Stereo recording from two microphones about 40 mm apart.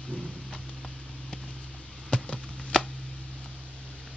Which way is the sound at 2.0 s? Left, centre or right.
Left.